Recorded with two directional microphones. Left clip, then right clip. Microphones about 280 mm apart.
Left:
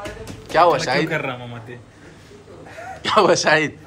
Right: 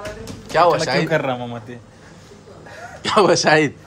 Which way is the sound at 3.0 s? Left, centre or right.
Centre.